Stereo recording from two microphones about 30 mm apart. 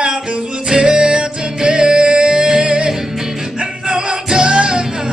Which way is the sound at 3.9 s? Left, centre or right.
Right.